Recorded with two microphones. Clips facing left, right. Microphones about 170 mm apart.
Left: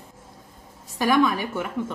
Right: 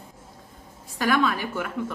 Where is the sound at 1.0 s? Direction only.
15° left (ahead or behind).